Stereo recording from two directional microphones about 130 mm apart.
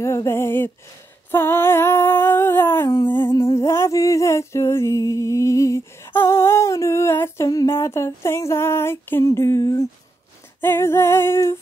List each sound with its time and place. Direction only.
0.0 s female singing: 20° left (ahead or behind)
1.3 s humming: 20° left (ahead or behind)
3.3 s a sound: 20° left (ahead or behind)
10.6 s female singing: 20° left (ahead or behind)